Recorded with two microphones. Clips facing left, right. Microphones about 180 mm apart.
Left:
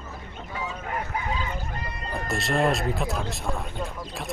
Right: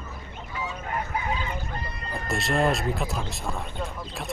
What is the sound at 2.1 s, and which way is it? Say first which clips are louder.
Speech: even; centre (ahead or behind).